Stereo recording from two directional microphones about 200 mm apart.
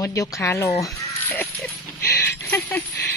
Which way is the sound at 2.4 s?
10° left (ahead or behind).